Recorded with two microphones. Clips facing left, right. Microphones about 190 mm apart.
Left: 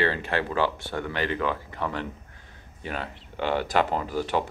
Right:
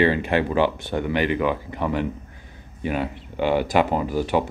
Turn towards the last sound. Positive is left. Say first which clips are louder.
# right 5 dB
turn(degrees=-10)  # may be behind; listen again after turning